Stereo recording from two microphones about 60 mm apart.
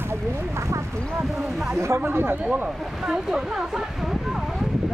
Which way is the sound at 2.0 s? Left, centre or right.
Right.